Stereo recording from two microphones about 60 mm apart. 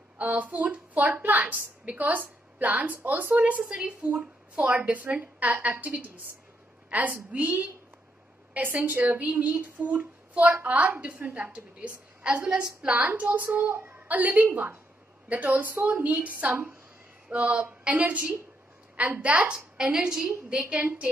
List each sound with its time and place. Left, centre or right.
0.2 s a woman's voice: right
6.9 s a woman's voice: right
8.7 s a woman's voice: right; by 20.6 s centre